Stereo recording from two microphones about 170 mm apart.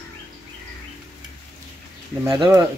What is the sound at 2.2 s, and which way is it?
Speech, 20° right (ahead or behind).